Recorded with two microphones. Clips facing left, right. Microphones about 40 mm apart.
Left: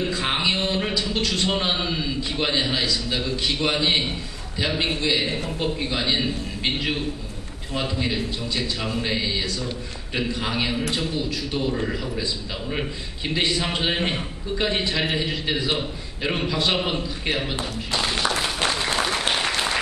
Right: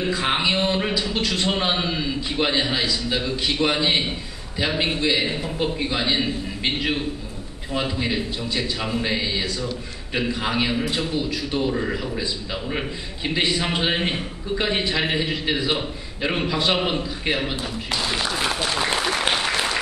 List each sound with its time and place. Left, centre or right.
0.0 s a man's voice: centre
19.0 s applause: centre